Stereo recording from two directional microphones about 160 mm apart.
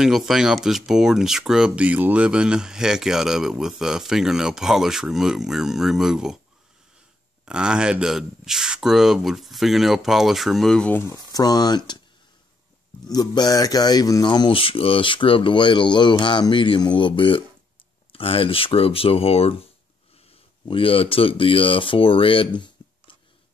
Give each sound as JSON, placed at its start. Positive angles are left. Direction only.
{"t": 0.0, "sound": "speech", "side_deg": 0}
{"t": 7.4, "sound": "speech", "side_deg": -5}
{"t": 13.0, "sound": "speech", "side_deg": 25}